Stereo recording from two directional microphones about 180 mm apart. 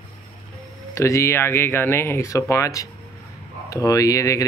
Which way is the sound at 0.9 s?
15° left (ahead or behind).